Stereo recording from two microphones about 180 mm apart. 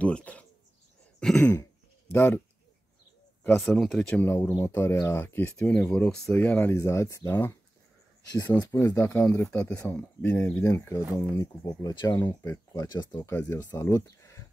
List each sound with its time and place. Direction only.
0.0 s speech: 5° left (ahead or behind)
3.4 s speech: 5° left (ahead or behind)
8.5 s speech: 20° left (ahead or behind)